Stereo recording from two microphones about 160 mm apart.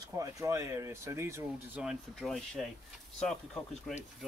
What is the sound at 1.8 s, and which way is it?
Speech, centre (ahead or behind).